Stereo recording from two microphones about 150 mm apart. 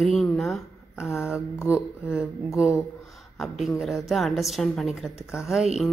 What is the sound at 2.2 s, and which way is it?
Mantra, 5° right (ahead or behind).